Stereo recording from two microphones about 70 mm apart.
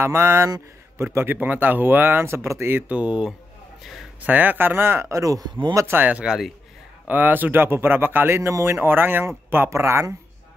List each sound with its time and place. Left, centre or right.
0.0 s speech: right
2.9 s speech: centre; by 5.5 s right
5.9 s speech: right
6.2 s a man's voice: centre
7.1 s speech: right
8.4 s speech: right